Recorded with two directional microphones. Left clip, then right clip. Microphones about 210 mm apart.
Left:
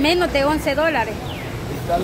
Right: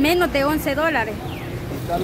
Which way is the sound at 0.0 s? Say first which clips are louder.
Left 1 dB; 15° right (ahead or behind).